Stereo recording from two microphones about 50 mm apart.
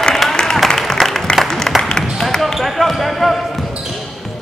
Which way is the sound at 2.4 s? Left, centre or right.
Centre.